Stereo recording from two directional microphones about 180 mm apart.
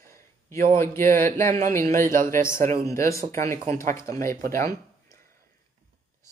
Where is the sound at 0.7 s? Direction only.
15° left (ahead or behind).